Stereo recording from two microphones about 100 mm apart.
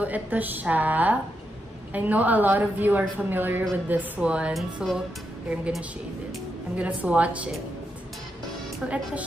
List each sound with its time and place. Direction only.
0.0 s a woman's voice: 15° right (ahead or behind)
8.8 s a woman's voice: 15° right (ahead or behind)